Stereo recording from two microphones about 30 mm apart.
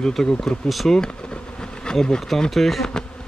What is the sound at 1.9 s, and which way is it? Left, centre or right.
Bee, left.